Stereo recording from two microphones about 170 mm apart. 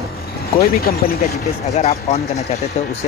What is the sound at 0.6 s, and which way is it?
Speech, 65° left (ahead or behind).